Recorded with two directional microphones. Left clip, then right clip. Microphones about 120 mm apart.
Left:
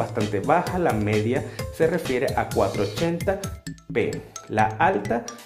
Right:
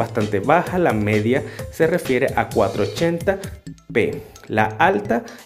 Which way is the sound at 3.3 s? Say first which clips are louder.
Right 4 dB; 30° right (ahead or behind).